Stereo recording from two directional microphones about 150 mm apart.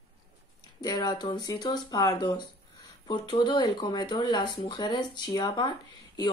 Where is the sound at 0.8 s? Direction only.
25° left (ahead or behind).